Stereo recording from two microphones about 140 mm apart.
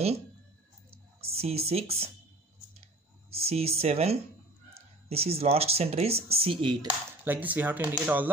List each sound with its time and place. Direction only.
1.2 s speech: 45° right (ahead or behind)
2.8 s a sound: 45° right (ahead or behind)
5.1 s speech: 45° right (ahead or behind)
7.2 s speech: 10° right (ahead or behind)